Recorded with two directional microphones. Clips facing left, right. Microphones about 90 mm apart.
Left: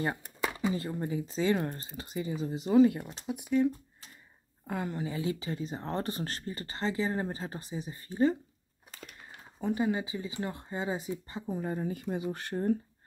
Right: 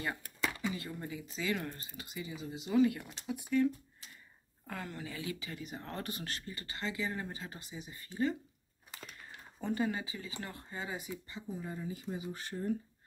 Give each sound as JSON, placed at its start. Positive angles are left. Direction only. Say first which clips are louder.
{"t": 0.4, "sound": "speech", "louder": "left 6 dB", "side_deg": 30}
{"t": 3.3, "sound": "speech", "louder": "left 3 dB", "side_deg": 20}
{"t": 9.4, "sound": "speech", "louder": "left 4 dB", "side_deg": 10}
{"t": 11.4, "sound": "speech", "louder": "left 8 dB", "side_deg": 55}